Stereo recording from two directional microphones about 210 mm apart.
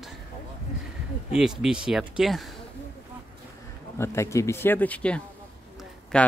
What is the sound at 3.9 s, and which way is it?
Speech, 10° left (ahead or behind).